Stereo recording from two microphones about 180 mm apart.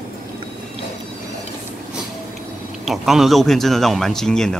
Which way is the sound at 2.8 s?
Centre (ahead or behind).